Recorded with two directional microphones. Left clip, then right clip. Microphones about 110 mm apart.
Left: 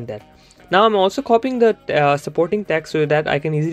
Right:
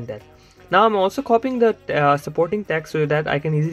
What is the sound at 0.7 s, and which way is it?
Speech, 30° left (ahead or behind).